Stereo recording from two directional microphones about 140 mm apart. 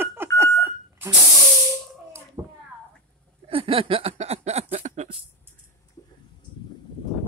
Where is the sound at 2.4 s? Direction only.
20° right (ahead or behind).